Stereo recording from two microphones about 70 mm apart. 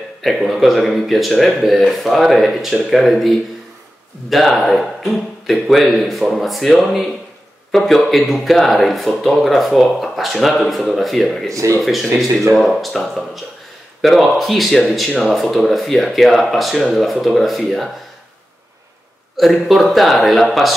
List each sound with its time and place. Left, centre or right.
0.2 s speech: centre
11.5 s speech: right
11.8 s speech: centre
19.3 s speech: centre